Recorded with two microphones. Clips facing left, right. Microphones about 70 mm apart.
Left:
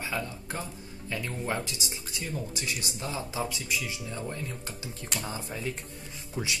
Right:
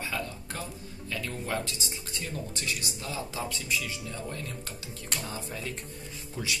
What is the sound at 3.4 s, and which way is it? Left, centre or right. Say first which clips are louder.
Speech: even; centre.